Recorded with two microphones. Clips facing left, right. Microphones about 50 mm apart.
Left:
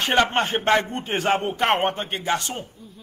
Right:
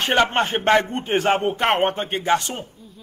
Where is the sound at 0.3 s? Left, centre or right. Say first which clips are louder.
Right 2 dB; right.